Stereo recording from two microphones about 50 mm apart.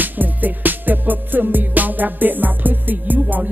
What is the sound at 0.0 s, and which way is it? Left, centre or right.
Speech, right.